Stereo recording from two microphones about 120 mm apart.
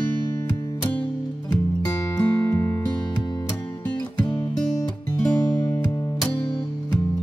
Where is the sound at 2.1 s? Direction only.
30° left (ahead or behind).